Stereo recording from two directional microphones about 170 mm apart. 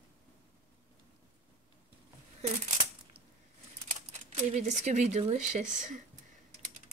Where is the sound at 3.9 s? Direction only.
45° right (ahead or behind).